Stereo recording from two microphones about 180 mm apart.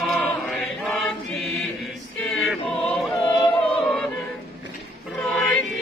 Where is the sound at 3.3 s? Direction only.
25° left (ahead or behind).